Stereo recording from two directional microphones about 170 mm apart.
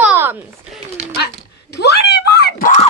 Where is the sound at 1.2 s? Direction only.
80° left.